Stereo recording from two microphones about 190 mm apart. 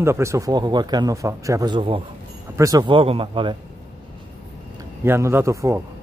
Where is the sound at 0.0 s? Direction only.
15° right (ahead or behind).